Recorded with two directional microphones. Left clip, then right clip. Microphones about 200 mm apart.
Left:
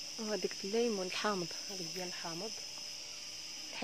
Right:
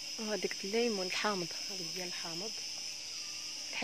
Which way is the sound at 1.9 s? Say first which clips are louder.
Right 1 dB; 25° left (ahead or behind).